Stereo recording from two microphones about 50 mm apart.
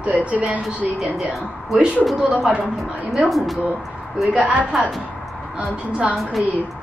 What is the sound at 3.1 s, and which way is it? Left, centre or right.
Speech, centre.